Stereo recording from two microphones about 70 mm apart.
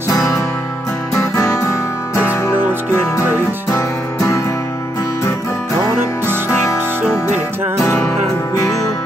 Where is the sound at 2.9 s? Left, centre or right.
Left.